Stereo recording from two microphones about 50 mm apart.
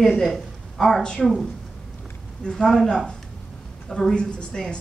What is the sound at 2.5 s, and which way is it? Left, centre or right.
A woman's voice, centre.